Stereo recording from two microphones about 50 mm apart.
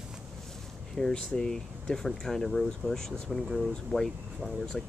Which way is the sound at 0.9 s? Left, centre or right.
Centre.